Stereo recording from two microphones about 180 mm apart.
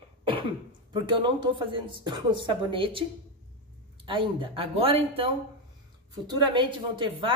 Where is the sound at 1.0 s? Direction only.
25° right (ahead or behind).